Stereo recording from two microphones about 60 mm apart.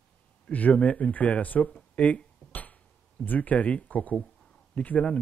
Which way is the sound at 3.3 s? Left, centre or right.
Left.